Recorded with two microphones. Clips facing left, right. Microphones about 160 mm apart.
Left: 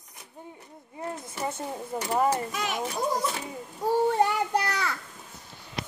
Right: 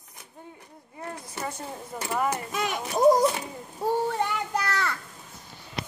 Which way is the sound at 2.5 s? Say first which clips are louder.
Right 1 dB; 45° right (ahead or behind).